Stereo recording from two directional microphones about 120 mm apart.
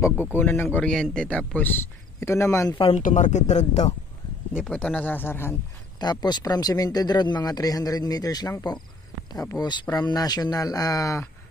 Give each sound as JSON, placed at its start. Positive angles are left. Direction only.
{"t": 0.0, "sound": "speech", "side_deg": 15}
{"t": 2.9, "sound": "speech", "side_deg": 90}
{"t": 4.6, "sound": "speech", "side_deg": 10}
{"t": 5.9, "sound": "speech", "side_deg": 35}